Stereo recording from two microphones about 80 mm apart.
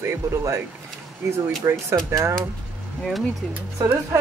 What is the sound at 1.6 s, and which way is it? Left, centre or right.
Speech, right.